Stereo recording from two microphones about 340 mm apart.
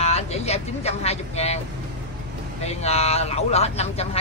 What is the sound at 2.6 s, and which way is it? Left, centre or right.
Speech, centre.